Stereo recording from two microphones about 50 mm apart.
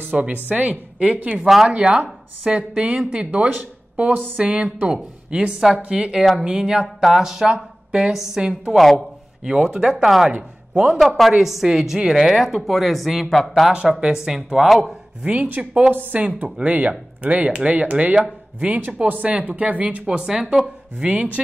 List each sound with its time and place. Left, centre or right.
0.1 s a woman's voice: right
1.4 s a woman's voice: centre
1.7 s a woman's voice: centre
3.3 s a woman's voice: right; by 8.4 s centre
8.4 s speech: centre
8.7 s a woman's voice: centre
9.4 s a woman's voice: centre
10.7 s a man's voice: centre
11.0 s a woman's voice: centre
15.4 s a woman's voice: right
16.2 s a woman's voice: right